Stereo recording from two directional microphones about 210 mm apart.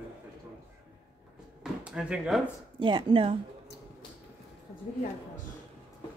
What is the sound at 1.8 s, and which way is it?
Speech, 5° right (ahead or behind).